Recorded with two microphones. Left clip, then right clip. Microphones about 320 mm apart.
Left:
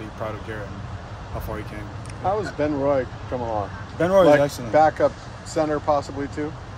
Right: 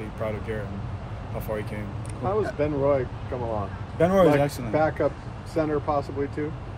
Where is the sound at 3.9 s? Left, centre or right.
Centre.